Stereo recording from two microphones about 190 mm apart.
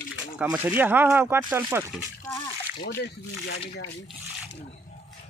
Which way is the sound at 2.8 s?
65° left (ahead or behind).